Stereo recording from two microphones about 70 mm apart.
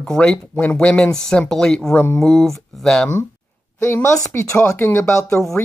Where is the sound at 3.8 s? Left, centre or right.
Left.